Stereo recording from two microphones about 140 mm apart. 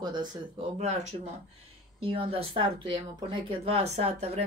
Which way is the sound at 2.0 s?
40° right (ahead or behind).